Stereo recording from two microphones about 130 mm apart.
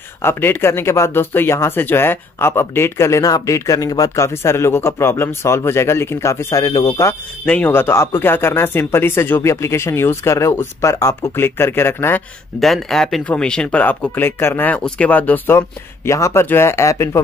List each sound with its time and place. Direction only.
0.2 s speech: 15° left (ahead or behind)
7.1 s speech: 10° left (ahead or behind)
12.5 s speech: centre (ahead or behind); by 17.2 s 25° left (ahead or behind)